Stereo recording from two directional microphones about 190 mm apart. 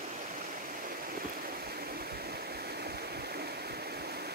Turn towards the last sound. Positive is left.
turn(degrees=-55)  # may be behind; listen again after turning